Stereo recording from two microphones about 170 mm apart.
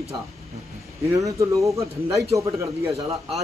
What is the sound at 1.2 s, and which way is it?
Speech, 20° right (ahead or behind).